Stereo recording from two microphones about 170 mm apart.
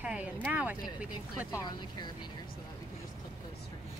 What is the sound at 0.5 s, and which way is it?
Speech, 10° right (ahead or behind).